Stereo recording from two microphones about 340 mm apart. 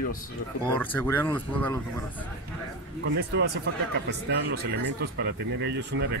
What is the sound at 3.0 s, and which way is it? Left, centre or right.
Speech, right.